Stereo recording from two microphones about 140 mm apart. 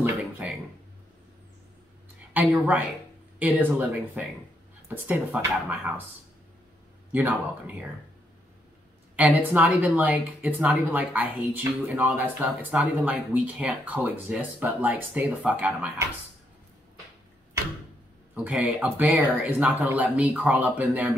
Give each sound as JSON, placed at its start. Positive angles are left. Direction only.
{"t": 0.0, "sound": "a sound", "side_deg": -10}
{"t": 2.3, "sound": "a woman's voice", "side_deg": -10}
{"t": 7.1, "sound": "a woman's voice", "side_deg": -10}
{"t": 9.1, "sound": "a woman's voice", "side_deg": -10}
{"t": 18.3, "sound": "a woman's voice", "side_deg": -10}